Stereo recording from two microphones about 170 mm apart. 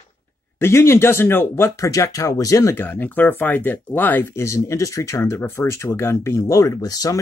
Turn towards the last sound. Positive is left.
turn(degrees=20)  # may be behind; listen again after turning